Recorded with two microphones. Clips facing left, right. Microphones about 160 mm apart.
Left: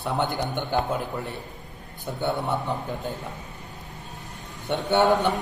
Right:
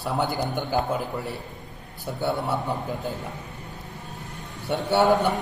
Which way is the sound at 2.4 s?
20° left (ahead or behind).